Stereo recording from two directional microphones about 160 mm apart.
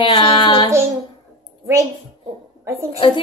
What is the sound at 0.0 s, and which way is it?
Child singing, 35° left (ahead or behind).